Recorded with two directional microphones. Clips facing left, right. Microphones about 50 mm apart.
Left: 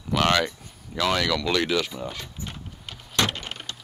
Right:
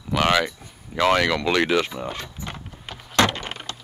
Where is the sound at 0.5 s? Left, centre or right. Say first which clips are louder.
Right 2 dB; right.